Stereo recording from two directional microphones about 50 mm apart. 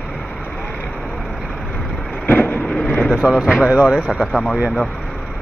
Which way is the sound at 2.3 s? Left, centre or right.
Left.